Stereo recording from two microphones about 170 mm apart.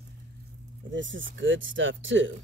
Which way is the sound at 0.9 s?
90° right.